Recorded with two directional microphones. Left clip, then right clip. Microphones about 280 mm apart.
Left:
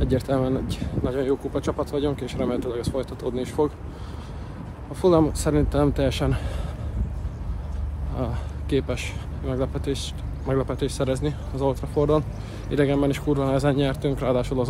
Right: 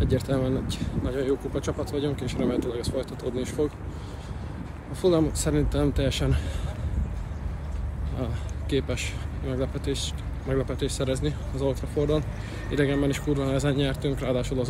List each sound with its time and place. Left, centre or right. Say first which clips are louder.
0.0 s speech: left 3 dB; centre
5.0 s speech: left 4 dB; centre
8.2 s speech: left 4 dB; centre